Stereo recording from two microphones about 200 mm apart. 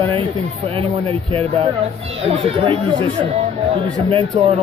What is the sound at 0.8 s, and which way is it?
Speech, 30° right (ahead or behind).